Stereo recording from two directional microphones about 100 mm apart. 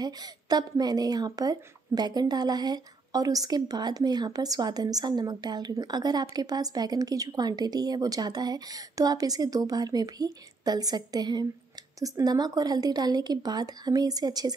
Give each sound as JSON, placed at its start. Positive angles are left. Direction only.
{"t": 0.0, "sound": "a woman's voice", "side_deg": -45}